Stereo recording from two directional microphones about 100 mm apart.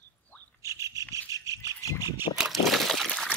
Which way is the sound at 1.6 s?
35° left (ahead or behind).